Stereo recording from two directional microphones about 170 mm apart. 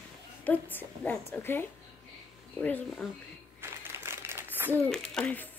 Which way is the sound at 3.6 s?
15° right (ahead or behind).